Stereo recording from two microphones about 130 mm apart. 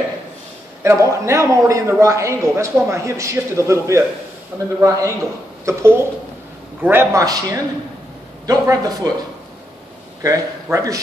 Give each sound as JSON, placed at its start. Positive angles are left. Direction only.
{"t": 0.8, "sound": "a man's voice", "side_deg": -20}
{"t": 10.2, "sound": "a man's voice", "side_deg": -25}